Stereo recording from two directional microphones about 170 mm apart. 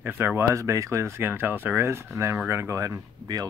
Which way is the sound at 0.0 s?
10° right (ahead or behind).